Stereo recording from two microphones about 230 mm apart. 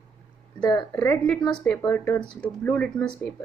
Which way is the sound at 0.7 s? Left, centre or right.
Centre.